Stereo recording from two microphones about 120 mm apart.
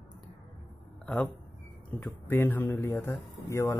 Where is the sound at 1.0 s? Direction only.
10° left (ahead or behind).